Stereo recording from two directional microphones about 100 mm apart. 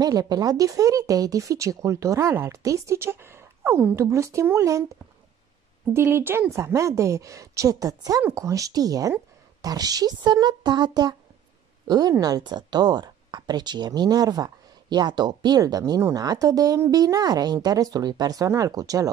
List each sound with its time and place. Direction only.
0.0 s speech: 40° right (ahead or behind)
5.9 s a woman's voice: 25° right (ahead or behind)